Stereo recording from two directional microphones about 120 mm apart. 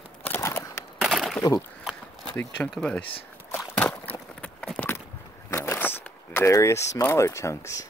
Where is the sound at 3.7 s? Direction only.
15° left (ahead or behind).